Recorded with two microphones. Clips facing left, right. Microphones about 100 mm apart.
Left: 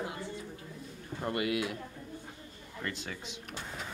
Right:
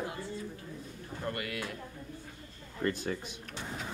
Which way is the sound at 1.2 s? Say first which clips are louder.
Left 5 dB; 20° left (ahead or behind).